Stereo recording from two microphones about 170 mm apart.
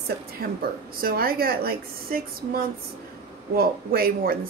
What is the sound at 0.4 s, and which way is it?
Speech, 60° right (ahead or behind).